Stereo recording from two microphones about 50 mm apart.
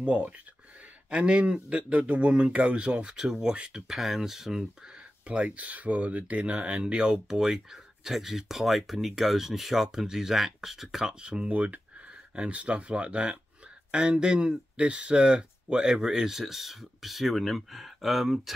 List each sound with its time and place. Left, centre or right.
1.1 s speech: right; by 4.6 s centre
5.2 s speech: right; by 18.5 s centre